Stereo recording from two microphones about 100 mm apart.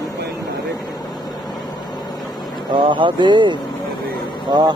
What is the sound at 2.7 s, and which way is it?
Speech, 55° right (ahead or behind).